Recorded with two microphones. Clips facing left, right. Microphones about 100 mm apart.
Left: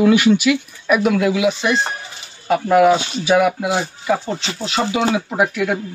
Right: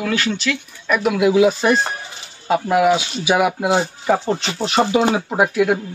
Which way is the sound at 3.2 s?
15° right (ahead or behind).